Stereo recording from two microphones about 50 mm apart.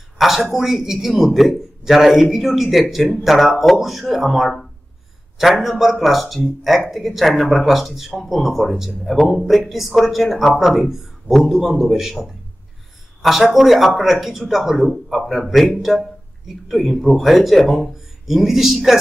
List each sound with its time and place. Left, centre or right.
0.2 s a man's voice: centre